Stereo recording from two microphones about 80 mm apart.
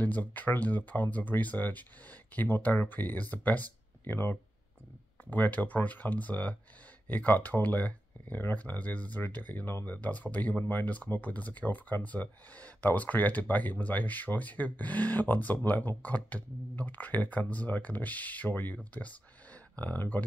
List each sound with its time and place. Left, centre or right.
0.0 s speech: left